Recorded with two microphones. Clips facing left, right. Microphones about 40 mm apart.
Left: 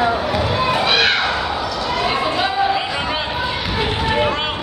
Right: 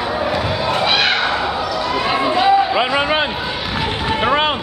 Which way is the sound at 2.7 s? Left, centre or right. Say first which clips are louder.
Right 5 dB; right.